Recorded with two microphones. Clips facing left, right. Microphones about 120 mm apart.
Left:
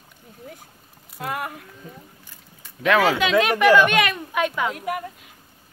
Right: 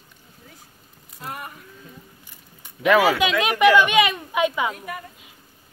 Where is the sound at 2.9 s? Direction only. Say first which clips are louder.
Right 1 dB; 5° right (ahead or behind).